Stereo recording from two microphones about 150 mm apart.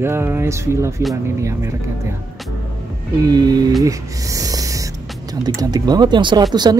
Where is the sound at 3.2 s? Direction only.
25° right (ahead or behind).